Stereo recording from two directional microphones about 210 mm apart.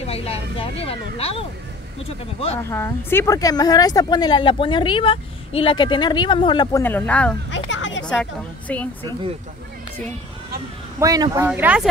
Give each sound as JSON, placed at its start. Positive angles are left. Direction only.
{"t": 0.0, "sound": "speech", "side_deg": 30}
{"t": 2.7, "sound": "speech", "side_deg": 10}
{"t": 6.8, "sound": "speech", "side_deg": 10}
{"t": 7.5, "sound": "a sound", "side_deg": 60}
{"t": 8.0, "sound": "a woman's voice", "side_deg": 5}
{"t": 11.0, "sound": "speech", "side_deg": -20}